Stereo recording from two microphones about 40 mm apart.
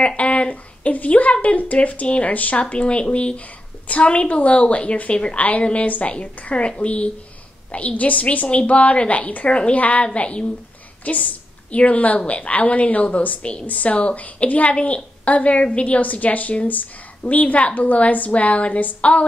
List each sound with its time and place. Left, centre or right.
0.0 s a sound: left
1.3 s a woman's voice: left
3.3 s a woman's voice: left
9.5 s speech: left
9.8 s a woman's voice: left
10.0 s speech: left
11.1 s a woman's voice: left